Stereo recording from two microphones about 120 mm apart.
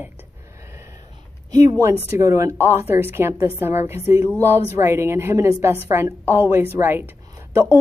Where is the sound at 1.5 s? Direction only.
35° right (ahead or behind).